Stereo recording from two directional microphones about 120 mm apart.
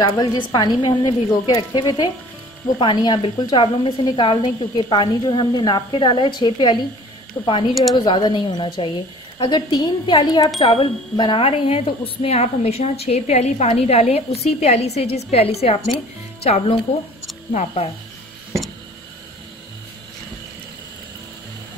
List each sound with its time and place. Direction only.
0.2 s a woman's voice: 30° left (ahead or behind)
10.6 s speech: 50° left (ahead or behind)
17.5 s speech: 80° left